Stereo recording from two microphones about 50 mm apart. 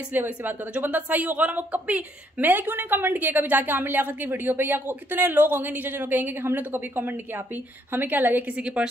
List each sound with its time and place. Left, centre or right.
0.1 s speech: right
8.5 s a woman's voice: right